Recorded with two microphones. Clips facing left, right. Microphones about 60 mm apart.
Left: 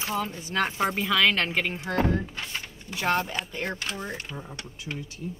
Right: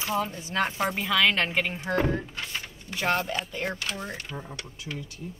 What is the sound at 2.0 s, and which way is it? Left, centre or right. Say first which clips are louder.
Speech: left 1 dB; left.